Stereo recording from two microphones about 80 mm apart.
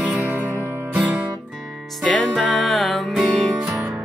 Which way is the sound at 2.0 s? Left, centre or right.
Centre.